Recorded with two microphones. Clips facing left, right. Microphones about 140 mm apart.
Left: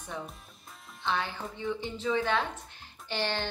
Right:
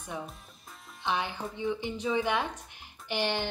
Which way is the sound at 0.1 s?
15° right (ahead or behind).